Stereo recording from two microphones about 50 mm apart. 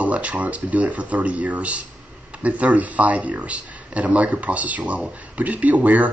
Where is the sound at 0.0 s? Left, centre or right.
Right.